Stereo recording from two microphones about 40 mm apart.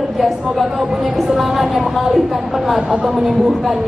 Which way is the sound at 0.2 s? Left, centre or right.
Centre.